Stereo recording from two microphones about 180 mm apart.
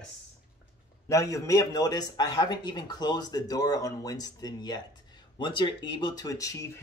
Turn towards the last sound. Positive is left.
turn(degrees=20)  # may be behind; listen again after turning